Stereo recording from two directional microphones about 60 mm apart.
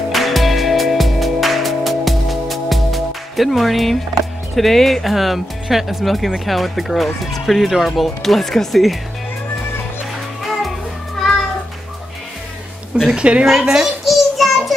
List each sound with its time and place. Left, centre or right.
0.1 s music: centre
4.6 s speech: centre
10.4 s music: centre
11.2 s cat: centre
12.9 s a woman's voice: centre
14.0 s child singing: centre